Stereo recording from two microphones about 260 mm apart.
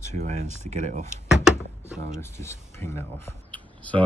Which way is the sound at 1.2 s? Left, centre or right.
Centre.